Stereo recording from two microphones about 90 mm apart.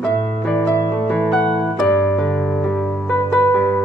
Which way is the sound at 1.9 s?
15° left (ahead or behind).